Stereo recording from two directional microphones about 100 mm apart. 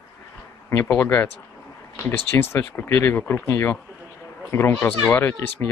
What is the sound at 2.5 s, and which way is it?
Speech, 25° left (ahead or behind).